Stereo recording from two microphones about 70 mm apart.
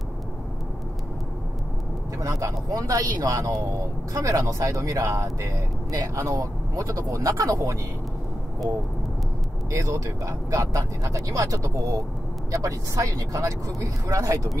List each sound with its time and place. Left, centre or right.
2.1 s speech: right
4.1 s speech: right
9.7 s speech: right